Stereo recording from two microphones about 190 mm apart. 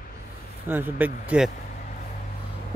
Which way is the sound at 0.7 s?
10° right (ahead or behind).